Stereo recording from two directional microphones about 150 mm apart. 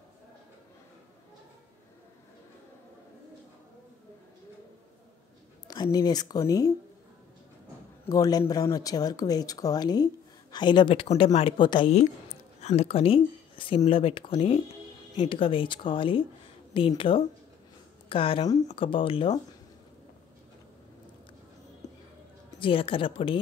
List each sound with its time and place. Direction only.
5.7 s speech: 25° left (ahead or behind)
8.1 s a woman's voice: 25° left (ahead or behind)
22.6 s speech: 35° left (ahead or behind)